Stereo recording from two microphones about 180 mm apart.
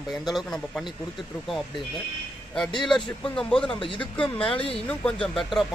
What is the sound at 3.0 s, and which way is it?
Speech, 25° left (ahead or behind).